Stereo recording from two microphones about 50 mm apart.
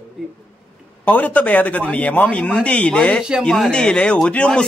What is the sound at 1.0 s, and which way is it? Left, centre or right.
A man's voice, left.